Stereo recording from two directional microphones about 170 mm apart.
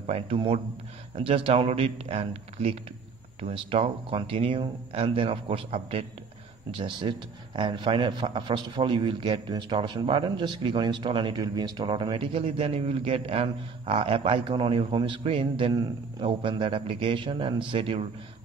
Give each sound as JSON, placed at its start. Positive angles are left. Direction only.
{"t": 0.0, "sound": "a man's voice", "side_deg": -35}